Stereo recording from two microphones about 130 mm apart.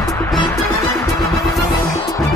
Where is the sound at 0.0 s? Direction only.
25° left (ahead or behind).